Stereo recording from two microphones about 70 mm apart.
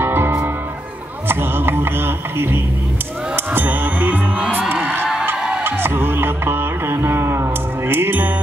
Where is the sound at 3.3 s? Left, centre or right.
Right.